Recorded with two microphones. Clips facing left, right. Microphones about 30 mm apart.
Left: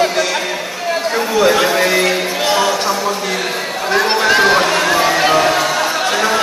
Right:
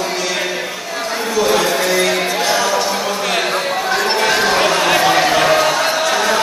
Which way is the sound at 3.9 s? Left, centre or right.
Centre.